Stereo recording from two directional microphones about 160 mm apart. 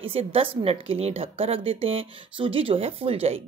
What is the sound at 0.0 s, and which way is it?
Speech, 35° right (ahead or behind).